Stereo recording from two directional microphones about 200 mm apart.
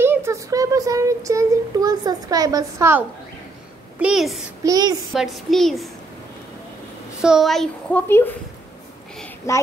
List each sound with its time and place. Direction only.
0.0 s speech: 10° right (ahead or behind)
4.0 s a woman's voice: centre (ahead or behind)
4.6 s speech: 20° right (ahead or behind)
5.1 s a woman's voice: centre (ahead or behind)
7.2 s a woman's voice: centre (ahead or behind)
9.5 s a child's voice: 15° left (ahead or behind)